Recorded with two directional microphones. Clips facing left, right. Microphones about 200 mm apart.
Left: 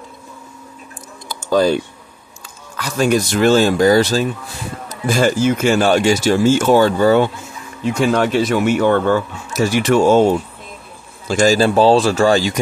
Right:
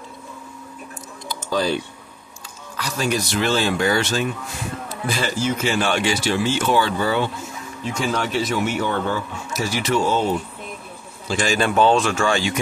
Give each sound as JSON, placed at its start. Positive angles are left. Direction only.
{"t": 1.3, "sound": "typing", "side_deg": 45}
{"t": 2.8, "sound": "speech", "side_deg": 50}
{"t": 7.8, "sound": "speech", "side_deg": 60}